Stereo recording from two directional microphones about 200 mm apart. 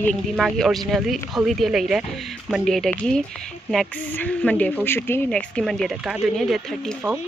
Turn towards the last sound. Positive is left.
turn(degrees=0)  # may be behind; listen again after turning